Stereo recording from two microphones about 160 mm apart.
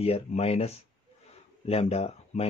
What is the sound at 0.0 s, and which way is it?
Speech, 40° left (ahead or behind).